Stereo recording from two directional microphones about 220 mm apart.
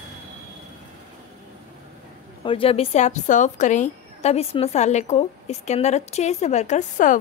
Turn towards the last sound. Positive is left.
turn(degrees=35)  # may be behind; listen again after turning